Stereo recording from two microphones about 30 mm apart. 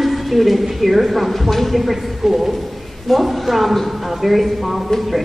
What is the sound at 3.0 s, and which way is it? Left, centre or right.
Speech, centre.